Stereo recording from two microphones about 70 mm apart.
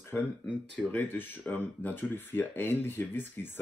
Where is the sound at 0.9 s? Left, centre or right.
Left.